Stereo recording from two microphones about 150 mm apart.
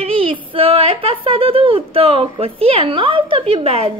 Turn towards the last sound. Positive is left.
turn(degrees=-40)  # may be behind; listen again after turning